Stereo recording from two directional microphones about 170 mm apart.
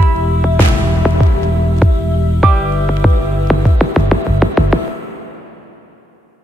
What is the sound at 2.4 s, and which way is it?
Music, centre (ahead or behind).